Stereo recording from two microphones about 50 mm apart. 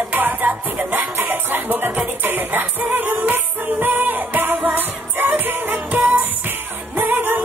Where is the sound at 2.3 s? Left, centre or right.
Right.